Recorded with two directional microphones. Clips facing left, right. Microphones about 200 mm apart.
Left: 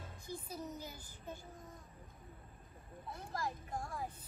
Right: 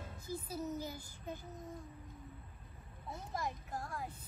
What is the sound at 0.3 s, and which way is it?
Speech, 5° right (ahead or behind).